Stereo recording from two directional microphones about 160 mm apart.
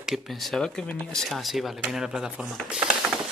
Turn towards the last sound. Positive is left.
turn(degrees=-5)  # may be behind; listen again after turning